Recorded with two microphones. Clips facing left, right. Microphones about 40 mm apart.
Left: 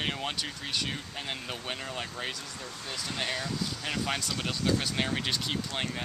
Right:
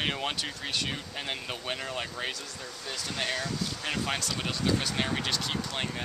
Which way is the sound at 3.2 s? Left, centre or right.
Centre.